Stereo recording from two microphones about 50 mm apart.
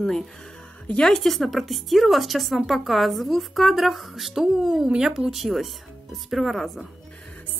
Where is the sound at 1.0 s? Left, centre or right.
Centre.